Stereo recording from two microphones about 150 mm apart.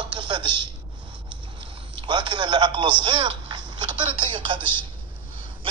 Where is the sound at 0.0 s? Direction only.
30° right (ahead or behind).